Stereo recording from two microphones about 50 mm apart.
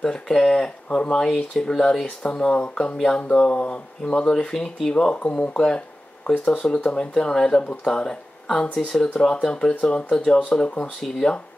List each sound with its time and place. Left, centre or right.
0.0 s speech: centre
0.8 s speech: centre
2.0 s speech: left
4.6 s speech: centre
5.0 s speech: left
5.5 s speech: centre
11.0 s speech: centre